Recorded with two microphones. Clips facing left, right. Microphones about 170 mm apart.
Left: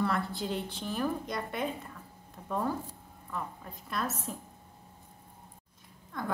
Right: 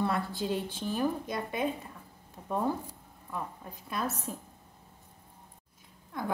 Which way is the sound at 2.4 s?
15° right (ahead or behind).